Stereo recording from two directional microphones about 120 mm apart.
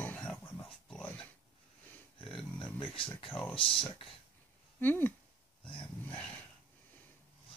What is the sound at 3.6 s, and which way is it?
Speech, 5° left (ahead or behind).